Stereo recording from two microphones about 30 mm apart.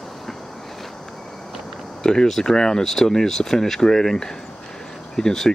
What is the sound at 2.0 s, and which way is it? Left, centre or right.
Speech, centre.